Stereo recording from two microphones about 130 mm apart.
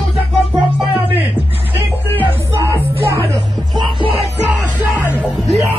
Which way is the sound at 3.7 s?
35° right (ahead or behind).